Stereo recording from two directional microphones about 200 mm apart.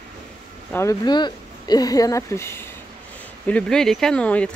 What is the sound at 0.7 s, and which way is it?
Speech, 15° left (ahead or behind).